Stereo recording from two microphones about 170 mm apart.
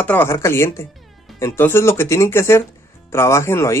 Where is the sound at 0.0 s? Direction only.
10° left (ahead or behind).